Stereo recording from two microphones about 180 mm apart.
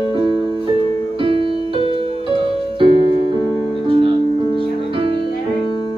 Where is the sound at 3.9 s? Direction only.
30° right (ahead or behind).